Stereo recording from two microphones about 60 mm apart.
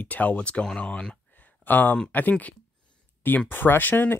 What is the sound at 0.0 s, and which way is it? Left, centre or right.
Speech, left.